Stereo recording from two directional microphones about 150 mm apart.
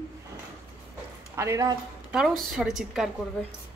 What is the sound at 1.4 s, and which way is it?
Speech, 20° right (ahead or behind).